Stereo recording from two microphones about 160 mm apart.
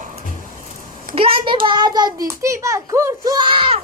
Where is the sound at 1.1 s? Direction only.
35° right (ahead or behind).